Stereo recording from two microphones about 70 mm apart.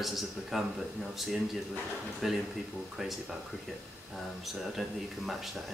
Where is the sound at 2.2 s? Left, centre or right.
Centre.